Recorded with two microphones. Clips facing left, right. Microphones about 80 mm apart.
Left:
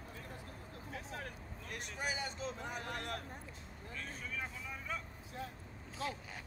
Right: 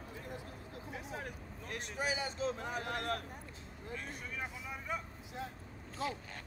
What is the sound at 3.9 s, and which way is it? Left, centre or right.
Speech, centre.